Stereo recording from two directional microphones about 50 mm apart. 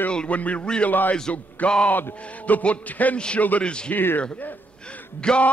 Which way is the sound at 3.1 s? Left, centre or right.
Left.